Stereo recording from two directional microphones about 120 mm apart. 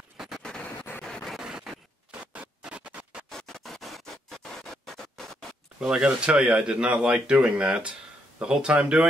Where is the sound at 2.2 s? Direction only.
10° right (ahead or behind).